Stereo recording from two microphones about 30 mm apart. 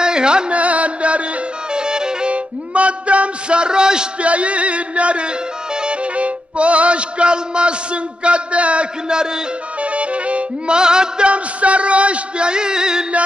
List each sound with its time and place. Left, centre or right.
0.0 s music: right
0.5 s music: right
1.7 s music: right
2.2 s speech: right
4.2 s male singing: right
6.1 s music: right
9.1 s music: right
9.8 s music: right
10.7 s music: right
11.2 s male singing: right